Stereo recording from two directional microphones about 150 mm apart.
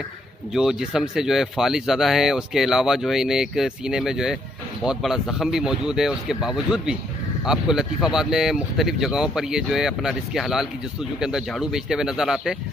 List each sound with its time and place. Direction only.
0.5 s speech: 5° right (ahead or behind)